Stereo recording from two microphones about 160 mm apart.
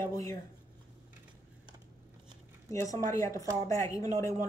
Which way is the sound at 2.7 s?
20° left (ahead or behind).